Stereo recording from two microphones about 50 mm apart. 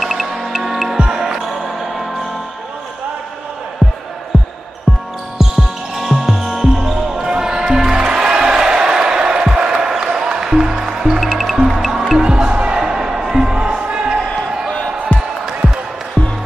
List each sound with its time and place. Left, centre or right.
0.0 s music: centre
3.8 s music: centre
4.3 s basketball bounce: centre
12.2 s music: centre
16.2 s music: left